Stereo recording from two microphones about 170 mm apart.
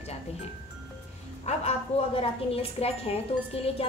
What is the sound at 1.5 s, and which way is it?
A woman's voice, 35° left (ahead or behind).